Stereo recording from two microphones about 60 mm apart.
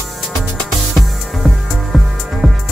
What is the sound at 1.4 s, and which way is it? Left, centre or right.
Music, centre.